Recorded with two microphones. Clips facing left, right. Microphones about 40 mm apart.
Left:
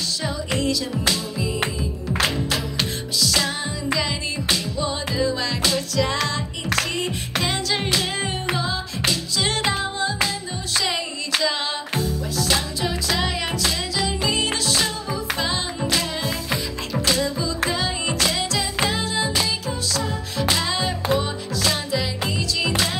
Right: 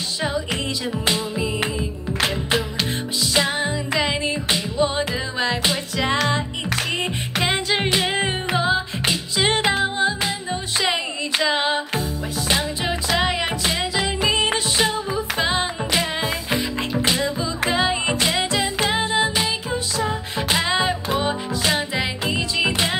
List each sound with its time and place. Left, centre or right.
0.6 s music: right
2.2 s music: right
10.8 s clapping: right
12.0 s music: right